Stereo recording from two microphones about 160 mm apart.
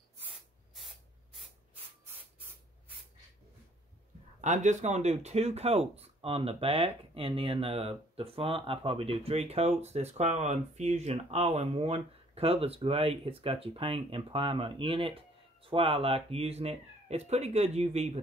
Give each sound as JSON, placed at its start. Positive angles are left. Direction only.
{"t": 0.7, "sound": "spray", "side_deg": 0}
{"t": 4.4, "sound": "speech", "side_deg": -50}